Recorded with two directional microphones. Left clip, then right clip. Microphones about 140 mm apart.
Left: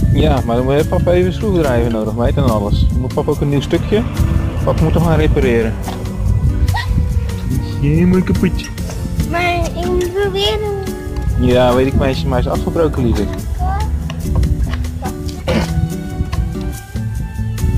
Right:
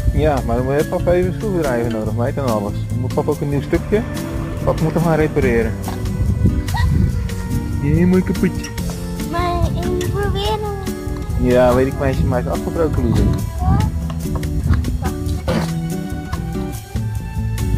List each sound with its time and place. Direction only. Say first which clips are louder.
0.2 s speech: left 2 dB; 5° left (ahead or behind)
7.8 s speech: left 2 dB; 5° left (ahead or behind)
9.3 s music: left 4 dB; 25° left (ahead or behind)
9.8 s music: left 6 dB; centre (ahead or behind)
11.4 s speech: left 1 dB; 5° left (ahead or behind)
15.0 s music: left 3 dB; centre (ahead or behind)